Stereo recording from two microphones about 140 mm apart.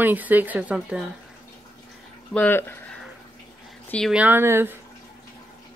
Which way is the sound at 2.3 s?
15° left (ahead or behind).